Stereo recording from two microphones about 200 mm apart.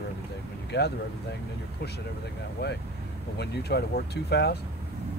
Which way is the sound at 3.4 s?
55° left (ahead or behind).